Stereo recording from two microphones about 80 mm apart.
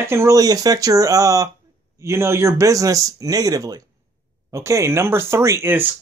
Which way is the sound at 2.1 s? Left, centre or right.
Right.